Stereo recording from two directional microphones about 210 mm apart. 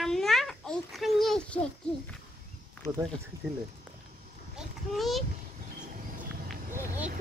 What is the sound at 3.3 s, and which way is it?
Speech, 15° right (ahead or behind).